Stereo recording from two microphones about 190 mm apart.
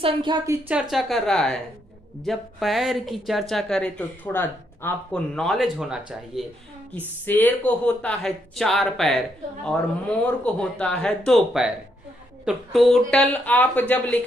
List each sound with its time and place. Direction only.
0.0 s speech: 25° right (ahead or behind)
0.7 s speech: 5° right (ahead or behind)
7.2 s speech: 10° left (ahead or behind)
10.2 s a woman's voice: 5° left (ahead or behind)